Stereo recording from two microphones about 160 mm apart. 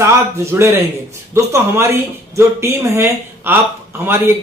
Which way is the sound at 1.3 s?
15° right (ahead or behind).